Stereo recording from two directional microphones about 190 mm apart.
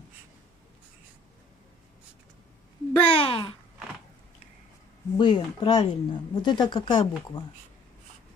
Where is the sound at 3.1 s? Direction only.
30° left (ahead or behind).